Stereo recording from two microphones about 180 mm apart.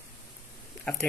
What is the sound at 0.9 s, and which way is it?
Speech, 5° left (ahead or behind).